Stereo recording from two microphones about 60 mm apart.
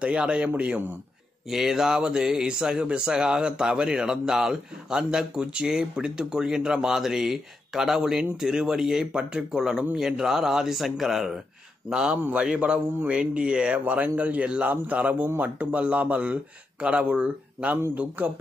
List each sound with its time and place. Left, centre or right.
0.0 s speech: centre
1.5 s a man's voice: centre; by 18.3 s right